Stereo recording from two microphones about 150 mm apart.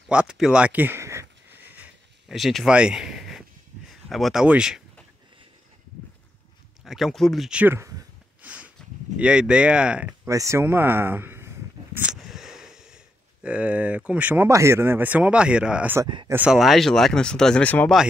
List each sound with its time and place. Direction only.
0.1 s a sound: 5° right (ahead or behind)
2.2 s speech: centre (ahead or behind)
6.8 s speech: centre (ahead or behind); by 8.0 s 20° right (ahead or behind)
8.4 s a sound: 10° right (ahead or behind)
9.2 s speech: 5° right (ahead or behind)
10.2 s speech: 20° right (ahead or behind)
16.0 s speech: 30° right (ahead or behind)
16.3 s speech: 10° right (ahead or behind); by 17.9 s 10° left (ahead or behind)